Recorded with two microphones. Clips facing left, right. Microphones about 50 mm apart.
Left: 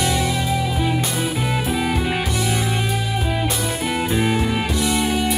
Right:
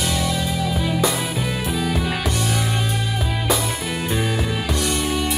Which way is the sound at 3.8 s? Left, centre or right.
Centre.